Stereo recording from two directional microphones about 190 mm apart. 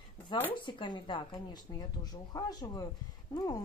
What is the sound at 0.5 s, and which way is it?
Speech, 25° left (ahead or behind).